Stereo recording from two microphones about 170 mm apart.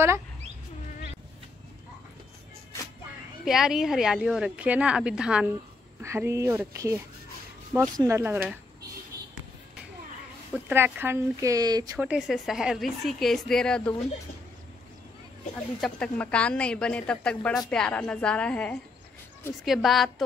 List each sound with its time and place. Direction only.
3.4 s speech: 5° right (ahead or behind)
5.9 s speech: 15° right (ahead or behind)
10.7 s speech: 10° right (ahead or behind)
12.0 s speech: 5° right (ahead or behind)
15.8 s a woman's voice: 5° left (ahead or behind)